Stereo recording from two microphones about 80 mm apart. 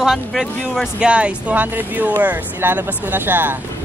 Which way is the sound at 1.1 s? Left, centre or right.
Centre.